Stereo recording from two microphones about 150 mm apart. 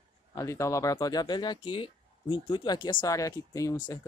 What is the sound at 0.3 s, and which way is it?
Speech, 20° left (ahead or behind).